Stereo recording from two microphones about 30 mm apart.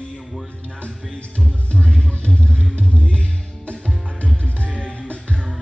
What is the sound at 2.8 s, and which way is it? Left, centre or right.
Music, left.